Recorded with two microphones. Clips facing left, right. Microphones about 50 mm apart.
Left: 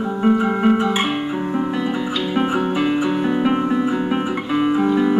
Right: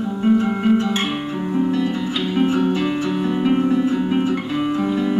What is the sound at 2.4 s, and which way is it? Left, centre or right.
Music, centre.